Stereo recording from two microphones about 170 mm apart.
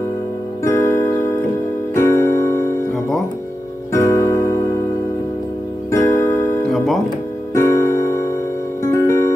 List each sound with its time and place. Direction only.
0.7 s music: 15° left (ahead or behind)
3.9 s music: 15° left (ahead or behind)
5.9 s music: 15° left (ahead or behind)
7.5 s music: 15° left (ahead or behind)